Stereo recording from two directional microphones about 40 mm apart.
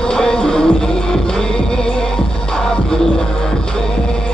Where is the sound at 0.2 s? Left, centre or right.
Centre.